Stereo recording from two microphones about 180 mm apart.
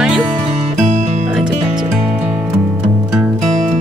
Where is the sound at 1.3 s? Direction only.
Centre (ahead or behind).